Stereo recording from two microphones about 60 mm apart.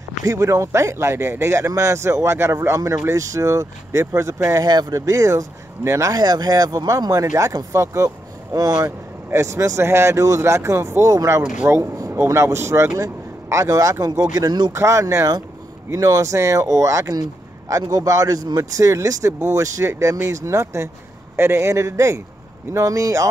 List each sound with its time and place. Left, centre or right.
0.2 s a man's voice: right
8.5 s speech: right
8.8 s speech: right
9.8 s a man's voice: right
13.0 s speech: right
14.7 s a man's voice: right
22.8 s a man's voice: right